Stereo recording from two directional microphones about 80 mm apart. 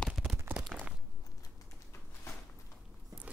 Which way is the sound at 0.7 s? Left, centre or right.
Centre.